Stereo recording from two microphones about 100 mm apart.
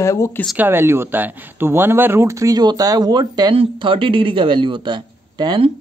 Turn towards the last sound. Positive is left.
turn(degrees=-45)  # may be behind; listen again after turning